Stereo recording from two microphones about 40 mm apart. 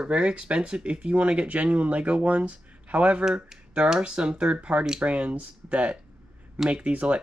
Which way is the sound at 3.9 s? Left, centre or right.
Right.